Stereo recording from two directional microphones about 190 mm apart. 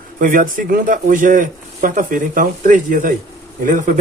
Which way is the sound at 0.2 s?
45° right (ahead or behind).